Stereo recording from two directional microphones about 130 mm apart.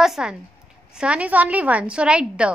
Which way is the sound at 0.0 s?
5° right (ahead or behind).